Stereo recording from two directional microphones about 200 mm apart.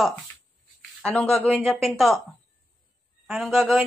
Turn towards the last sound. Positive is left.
turn(degrees=0)  # may be behind; listen again after turning